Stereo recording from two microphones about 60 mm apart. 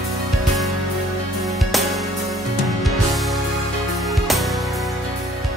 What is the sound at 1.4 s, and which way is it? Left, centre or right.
Music, centre.